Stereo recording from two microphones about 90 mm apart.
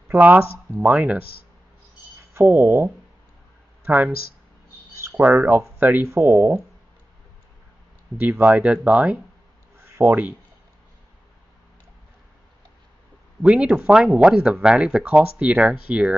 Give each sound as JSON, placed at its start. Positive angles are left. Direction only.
{"t": 0.8, "sound": "speech", "side_deg": -15}
{"t": 2.3, "sound": "speech", "side_deg": -25}
{"t": 4.9, "sound": "a sound", "side_deg": -35}
{"t": 5.2, "sound": "speech", "side_deg": -20}
{"t": 8.2, "sound": "speech", "side_deg": -20}
{"t": 13.4, "sound": "speech", "side_deg": -15}